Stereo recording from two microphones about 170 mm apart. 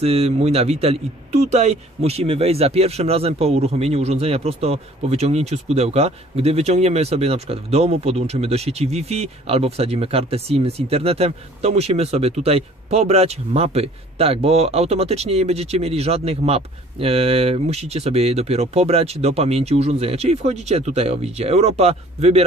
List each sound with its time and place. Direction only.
0.0 s a man's voice: 35° right (ahead or behind)